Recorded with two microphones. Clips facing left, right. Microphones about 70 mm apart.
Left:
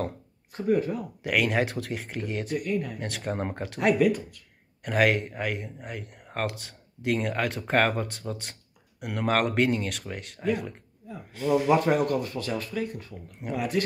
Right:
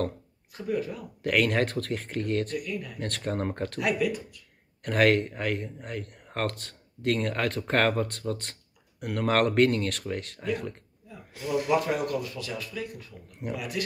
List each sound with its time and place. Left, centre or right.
0.5 s speech: left
1.2 s speech: centre
2.6 s speech: left
3.0 s speech: centre
3.8 s speech: left
4.8 s speech: centre
11.7 s speech: left